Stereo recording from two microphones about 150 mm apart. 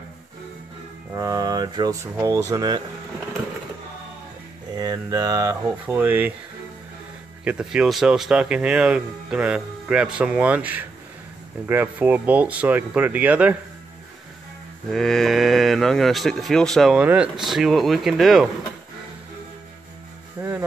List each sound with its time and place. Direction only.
1.1 s speech: 20° right (ahead or behind)
4.7 s speech: 25° right (ahead or behind)
7.4 s speech: 5° right (ahead or behind)
14.9 s speech: 5° left (ahead or behind)